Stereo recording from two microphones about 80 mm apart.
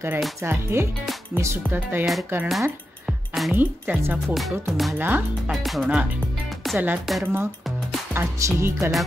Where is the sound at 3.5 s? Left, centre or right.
Right.